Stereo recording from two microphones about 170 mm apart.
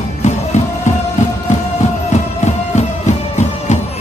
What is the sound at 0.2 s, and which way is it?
Music, 40° left (ahead or behind).